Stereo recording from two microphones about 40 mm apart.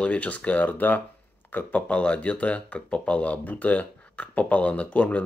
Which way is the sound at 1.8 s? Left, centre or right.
Left.